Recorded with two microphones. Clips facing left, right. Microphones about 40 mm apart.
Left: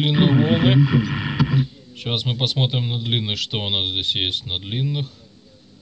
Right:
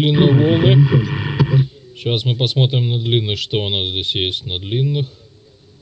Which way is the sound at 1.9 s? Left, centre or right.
Right.